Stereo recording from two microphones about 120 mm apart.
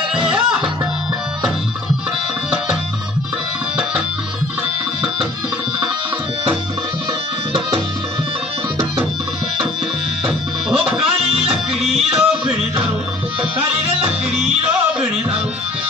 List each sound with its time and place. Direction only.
0.1 s music: 5° right (ahead or behind)
10.8 s music: 5° right (ahead or behind)
12.0 s yodeling: 55° right (ahead or behind)
14.3 s music: 5° right (ahead or behind)